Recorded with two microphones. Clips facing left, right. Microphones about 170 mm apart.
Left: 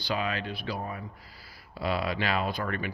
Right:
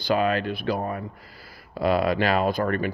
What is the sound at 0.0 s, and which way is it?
Speech, 50° right (ahead or behind).